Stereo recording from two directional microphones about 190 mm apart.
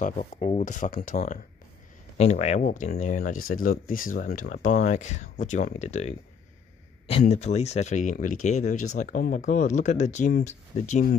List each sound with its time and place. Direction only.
0.0 s speech: 35° left (ahead or behind)